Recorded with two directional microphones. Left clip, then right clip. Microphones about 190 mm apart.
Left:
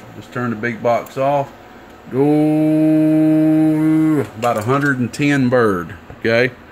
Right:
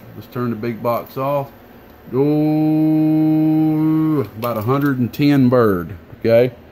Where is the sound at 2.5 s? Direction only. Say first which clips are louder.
Left 2 dB; 15° right (ahead or behind).